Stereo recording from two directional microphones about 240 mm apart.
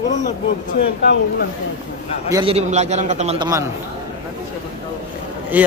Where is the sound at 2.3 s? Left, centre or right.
Right.